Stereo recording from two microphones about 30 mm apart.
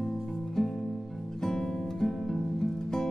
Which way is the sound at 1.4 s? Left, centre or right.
Centre.